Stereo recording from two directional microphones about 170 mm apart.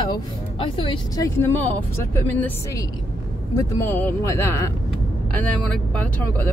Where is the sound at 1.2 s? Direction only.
15° left (ahead or behind).